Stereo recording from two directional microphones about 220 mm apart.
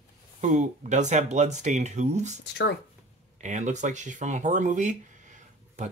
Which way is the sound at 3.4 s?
35° right (ahead or behind).